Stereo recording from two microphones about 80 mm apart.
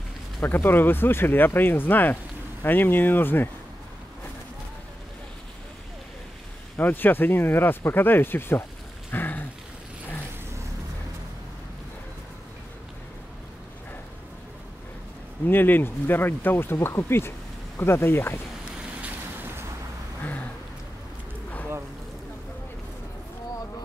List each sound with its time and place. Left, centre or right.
0.4 s speech: left
6.8 s speech: left
9.1 s rain on surface: left
15.4 s speech: left
18.9 s boat: right